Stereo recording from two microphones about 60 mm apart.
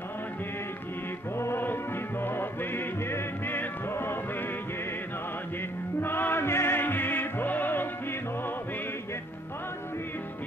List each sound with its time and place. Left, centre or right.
1.4 s music: left
5.9 s music: left